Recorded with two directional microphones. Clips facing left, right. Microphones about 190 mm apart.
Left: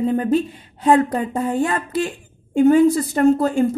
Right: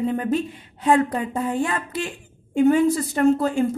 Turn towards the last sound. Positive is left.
turn(degrees=40)  # may be behind; listen again after turning